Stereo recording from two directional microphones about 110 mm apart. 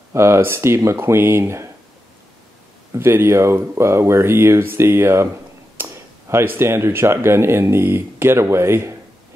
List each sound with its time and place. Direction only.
0.1 s speech: 25° right (ahead or behind)
2.9 s speech: 25° right (ahead or behind)